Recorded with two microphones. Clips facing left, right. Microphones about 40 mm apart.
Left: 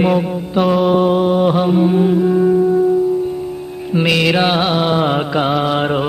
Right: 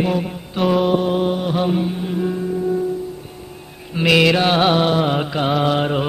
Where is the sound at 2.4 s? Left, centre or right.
Left.